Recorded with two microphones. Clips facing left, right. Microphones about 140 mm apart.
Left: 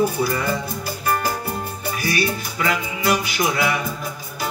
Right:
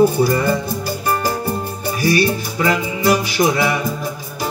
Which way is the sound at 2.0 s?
30° right (ahead or behind).